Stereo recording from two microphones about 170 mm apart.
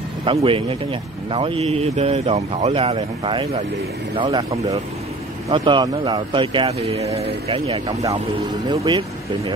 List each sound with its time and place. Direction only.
0.2 s speech: 30° right (ahead or behind)